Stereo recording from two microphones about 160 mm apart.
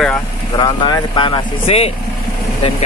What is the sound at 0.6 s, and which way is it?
Speech, 30° left (ahead or behind).